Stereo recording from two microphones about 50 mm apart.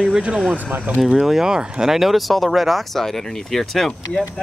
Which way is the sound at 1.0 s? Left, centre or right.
Centre.